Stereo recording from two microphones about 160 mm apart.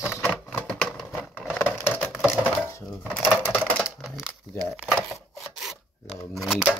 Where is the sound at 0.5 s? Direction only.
5° left (ahead or behind).